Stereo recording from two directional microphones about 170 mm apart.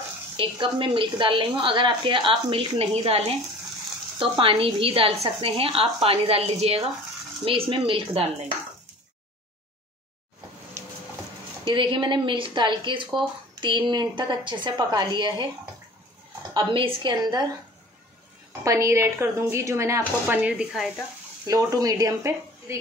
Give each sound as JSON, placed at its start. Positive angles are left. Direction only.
{"t": 0.4, "sound": "a woman's voice", "side_deg": -30}
{"t": 11.6, "sound": "a woman's voice", "side_deg": -30}
{"t": 18.6, "sound": "speech", "side_deg": -20}
{"t": 21.5, "sound": "a woman's voice", "side_deg": -20}